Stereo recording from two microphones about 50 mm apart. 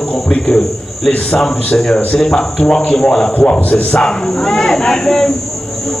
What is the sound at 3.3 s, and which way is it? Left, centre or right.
Speech, left.